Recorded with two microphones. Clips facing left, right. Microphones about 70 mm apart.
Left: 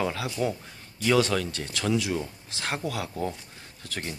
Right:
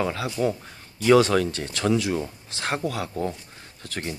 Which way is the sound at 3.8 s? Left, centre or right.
Centre.